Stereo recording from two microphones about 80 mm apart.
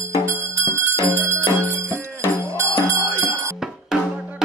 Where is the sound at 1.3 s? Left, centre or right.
Right.